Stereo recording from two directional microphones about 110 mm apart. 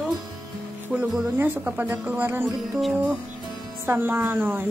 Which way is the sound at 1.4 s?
15° right (ahead or behind).